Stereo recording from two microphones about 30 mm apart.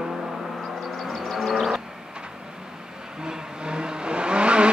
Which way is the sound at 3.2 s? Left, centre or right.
Right.